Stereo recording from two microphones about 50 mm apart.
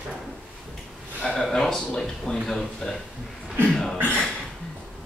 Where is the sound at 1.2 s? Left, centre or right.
Left.